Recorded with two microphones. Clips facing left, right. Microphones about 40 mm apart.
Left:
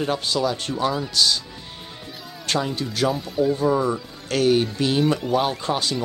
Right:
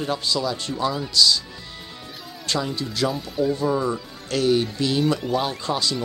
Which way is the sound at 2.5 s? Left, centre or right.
Left.